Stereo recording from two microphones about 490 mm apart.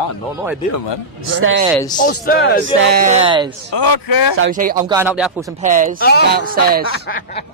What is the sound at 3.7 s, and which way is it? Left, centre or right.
Speech, left.